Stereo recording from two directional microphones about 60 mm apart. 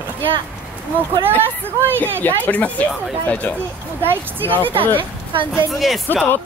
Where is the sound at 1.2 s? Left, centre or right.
Right.